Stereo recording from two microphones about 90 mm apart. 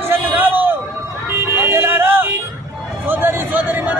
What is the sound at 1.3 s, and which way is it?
Music, 25° right (ahead or behind).